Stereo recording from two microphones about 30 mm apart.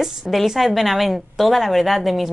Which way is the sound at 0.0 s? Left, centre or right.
Centre.